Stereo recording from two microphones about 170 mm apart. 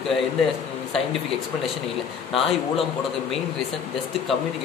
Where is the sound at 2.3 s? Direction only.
35° left (ahead or behind).